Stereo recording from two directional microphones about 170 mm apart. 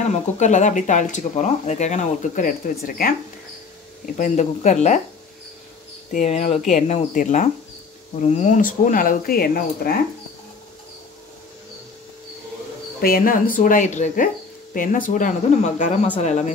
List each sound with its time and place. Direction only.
0.0 s speech: 45° left (ahead or behind)
4.0 s speech: 50° left (ahead or behind)
6.1 s speech: 40° left (ahead or behind); by 9.9 s 60° left (ahead or behind)
13.0 s speech: 55° left (ahead or behind)